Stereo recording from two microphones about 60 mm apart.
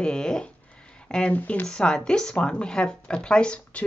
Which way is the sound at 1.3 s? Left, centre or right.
Left.